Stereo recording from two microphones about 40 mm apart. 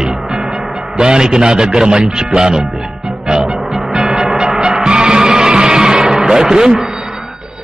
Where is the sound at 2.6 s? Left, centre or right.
Centre.